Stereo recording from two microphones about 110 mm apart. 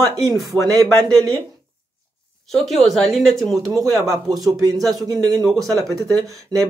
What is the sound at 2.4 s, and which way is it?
Speech, centre (ahead or behind).